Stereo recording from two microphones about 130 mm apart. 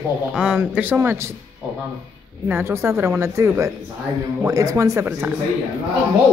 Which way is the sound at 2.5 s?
20° right (ahead or behind).